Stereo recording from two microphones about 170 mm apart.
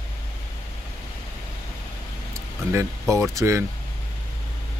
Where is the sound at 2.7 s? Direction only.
15° right (ahead or behind).